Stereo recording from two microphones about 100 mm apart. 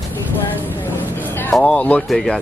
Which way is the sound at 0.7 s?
20° left (ahead or behind).